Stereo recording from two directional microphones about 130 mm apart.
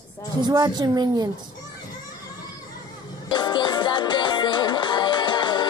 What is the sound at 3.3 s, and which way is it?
Music, 35° left (ahead or behind).